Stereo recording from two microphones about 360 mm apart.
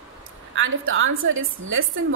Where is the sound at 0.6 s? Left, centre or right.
Right.